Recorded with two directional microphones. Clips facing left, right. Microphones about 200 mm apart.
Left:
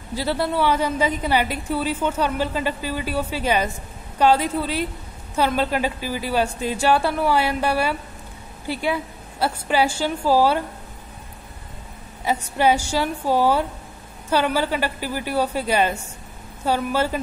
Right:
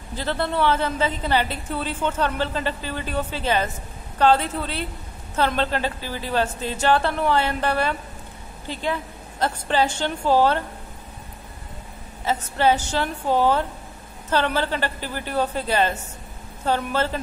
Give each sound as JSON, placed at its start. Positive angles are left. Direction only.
{"t": 0.1, "sound": "a woman's voice", "side_deg": 10}
{"t": 12.3, "sound": "a woman's voice", "side_deg": 15}